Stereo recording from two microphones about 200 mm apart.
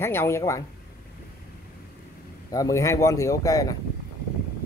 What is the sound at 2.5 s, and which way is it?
Speech, 15° left (ahead or behind).